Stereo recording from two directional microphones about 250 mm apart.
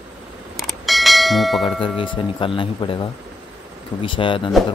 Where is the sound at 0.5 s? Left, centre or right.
Centre.